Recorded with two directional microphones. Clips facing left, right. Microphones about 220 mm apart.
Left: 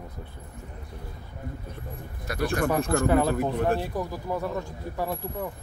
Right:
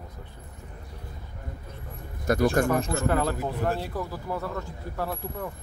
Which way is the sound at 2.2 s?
50° right (ahead or behind).